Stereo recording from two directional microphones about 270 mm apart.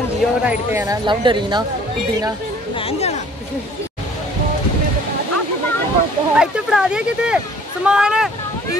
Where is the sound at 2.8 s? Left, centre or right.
Left.